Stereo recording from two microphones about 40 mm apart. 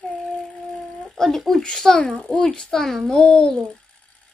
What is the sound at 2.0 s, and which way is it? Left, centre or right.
Speech, left.